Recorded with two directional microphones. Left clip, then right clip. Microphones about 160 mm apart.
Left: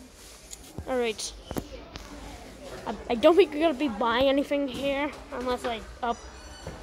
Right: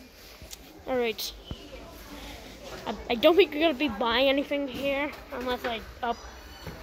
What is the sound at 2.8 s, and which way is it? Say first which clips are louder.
Speech: left 1 dB; 10° left (ahead or behind).